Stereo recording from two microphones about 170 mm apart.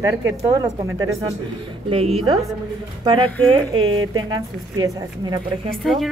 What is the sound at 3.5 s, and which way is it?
Speech, 30° right (ahead or behind).